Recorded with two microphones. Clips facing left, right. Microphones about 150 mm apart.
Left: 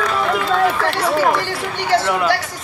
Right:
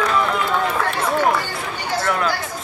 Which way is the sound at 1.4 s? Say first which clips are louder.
Left 4 dB; 90° left.